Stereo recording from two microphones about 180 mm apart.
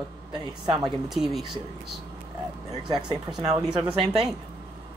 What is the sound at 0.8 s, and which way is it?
Speech, centre (ahead or behind).